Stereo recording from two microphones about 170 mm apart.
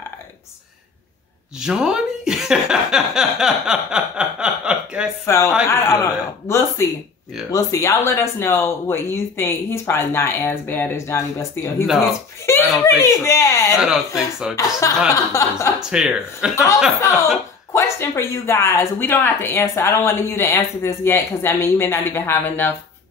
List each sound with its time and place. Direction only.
1.6 s speech: 5° right (ahead or behind)
5.2 s speech: 15° left (ahead or behind)
11.8 s speech: centre (ahead or behind)
12.4 s speech: 15° left (ahead or behind)
13.7 s speech: 5° right (ahead or behind)
14.8 s speech: 15° left (ahead or behind)
15.9 s speech: 5° right (ahead or behind)
17.7 s speech: 15° left (ahead or behind)